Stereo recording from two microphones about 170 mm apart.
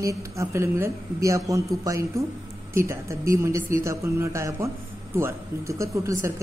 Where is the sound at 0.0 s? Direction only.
20° right (ahead or behind).